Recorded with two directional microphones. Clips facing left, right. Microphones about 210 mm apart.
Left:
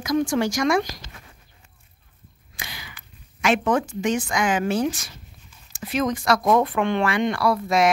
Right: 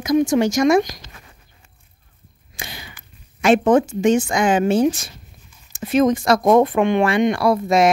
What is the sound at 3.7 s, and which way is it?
Speech, 25° right (ahead or behind).